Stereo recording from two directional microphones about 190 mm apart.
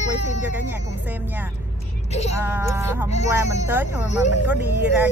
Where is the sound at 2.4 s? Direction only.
15° right (ahead or behind).